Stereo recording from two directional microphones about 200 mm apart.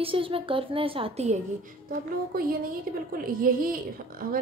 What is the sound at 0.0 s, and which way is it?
A woman's voice, 25° right (ahead or behind).